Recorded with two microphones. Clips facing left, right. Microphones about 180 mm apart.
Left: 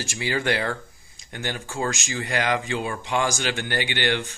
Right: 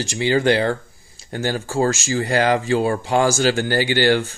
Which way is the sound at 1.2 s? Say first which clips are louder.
Right 8 dB; 40° right (ahead or behind).